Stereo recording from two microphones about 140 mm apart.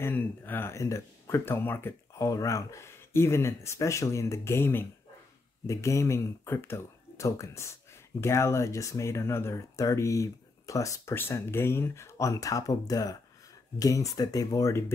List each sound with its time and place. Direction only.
0.0 s speech: 15° left (ahead or behind)